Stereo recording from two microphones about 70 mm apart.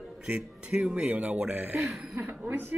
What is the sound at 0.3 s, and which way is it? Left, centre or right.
Speech, centre.